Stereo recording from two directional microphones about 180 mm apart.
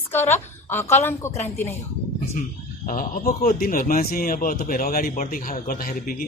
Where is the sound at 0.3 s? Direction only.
15° left (ahead or behind).